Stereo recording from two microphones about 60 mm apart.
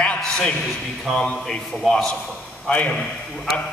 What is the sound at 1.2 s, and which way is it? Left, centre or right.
A man's voice, centre.